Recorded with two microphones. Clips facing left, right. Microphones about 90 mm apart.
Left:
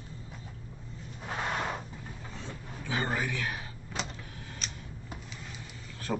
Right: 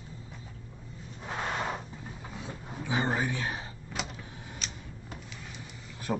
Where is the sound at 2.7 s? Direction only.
20° right (ahead or behind).